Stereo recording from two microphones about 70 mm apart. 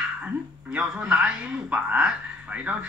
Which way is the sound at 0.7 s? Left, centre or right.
Right.